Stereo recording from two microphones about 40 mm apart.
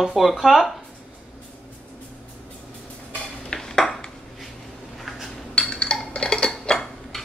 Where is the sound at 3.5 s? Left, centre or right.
Centre.